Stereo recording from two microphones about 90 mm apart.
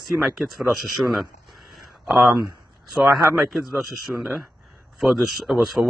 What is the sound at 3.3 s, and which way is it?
Speech, 5° right (ahead or behind).